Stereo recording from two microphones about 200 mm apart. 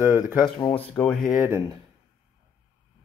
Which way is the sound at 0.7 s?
5° left (ahead or behind).